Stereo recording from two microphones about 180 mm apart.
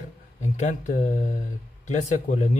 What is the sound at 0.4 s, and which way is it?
Speech, 40° left (ahead or behind).